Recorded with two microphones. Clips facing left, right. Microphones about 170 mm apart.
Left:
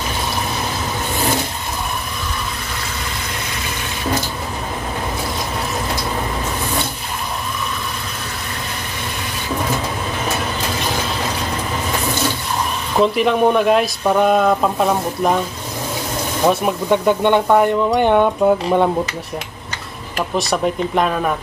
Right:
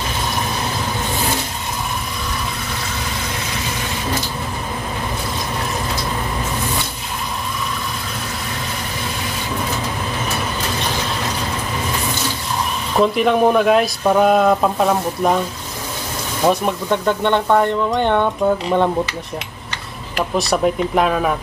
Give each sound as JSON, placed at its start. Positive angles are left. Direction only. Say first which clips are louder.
{"t": 13.0, "sound": "speech", "louder": "even", "side_deg": 0}
{"t": 16.4, "sound": "speech", "louder": "left 1 dB", "side_deg": 10}
{"t": 20.3, "sound": "speech", "louder": "right 2 dB", "side_deg": 0}